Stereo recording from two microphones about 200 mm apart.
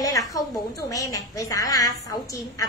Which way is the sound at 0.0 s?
15° left (ahead or behind).